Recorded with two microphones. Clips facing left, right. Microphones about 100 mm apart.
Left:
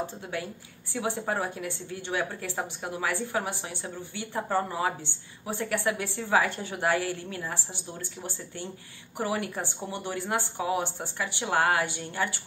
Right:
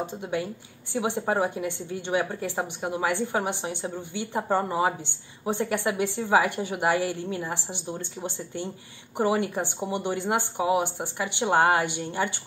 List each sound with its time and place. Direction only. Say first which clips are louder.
0.0 s a woman's voice: right 4 dB; 20° right (ahead or behind)